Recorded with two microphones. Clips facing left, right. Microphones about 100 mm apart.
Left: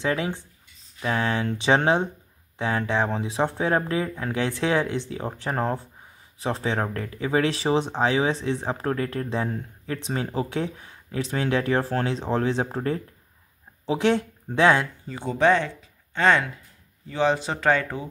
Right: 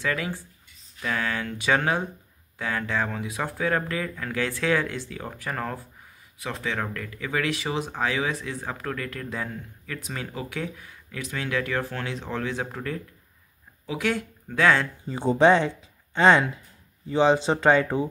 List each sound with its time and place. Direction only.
0.0 s speech: 20° left (ahead or behind)
15.0 s speech: 30° right (ahead or behind)